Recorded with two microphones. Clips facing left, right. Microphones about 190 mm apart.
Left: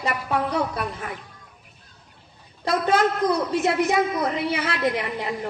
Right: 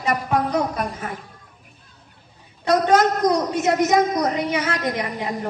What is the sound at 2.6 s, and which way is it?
Speech, 40° right (ahead or behind).